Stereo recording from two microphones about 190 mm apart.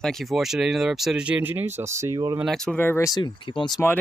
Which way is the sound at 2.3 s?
Centre (ahead or behind).